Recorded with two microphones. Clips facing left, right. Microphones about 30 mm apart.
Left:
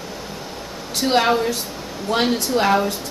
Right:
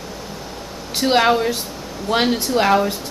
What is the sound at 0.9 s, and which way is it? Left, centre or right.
Speech, centre.